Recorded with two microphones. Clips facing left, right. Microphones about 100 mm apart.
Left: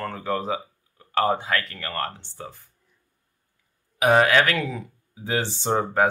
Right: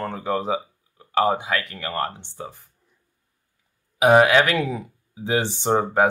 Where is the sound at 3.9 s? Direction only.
20° right (ahead or behind).